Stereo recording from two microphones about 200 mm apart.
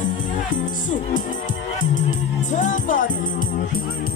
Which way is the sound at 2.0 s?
40° left (ahead or behind).